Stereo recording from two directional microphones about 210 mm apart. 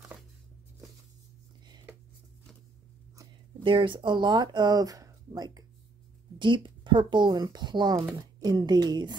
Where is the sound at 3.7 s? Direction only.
25° right (ahead or behind).